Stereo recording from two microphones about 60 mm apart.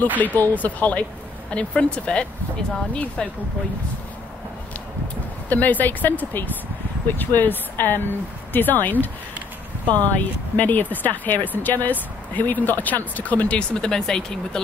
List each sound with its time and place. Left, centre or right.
0.2 s speech: left
5.5 s speech: left; by 14.6 s centre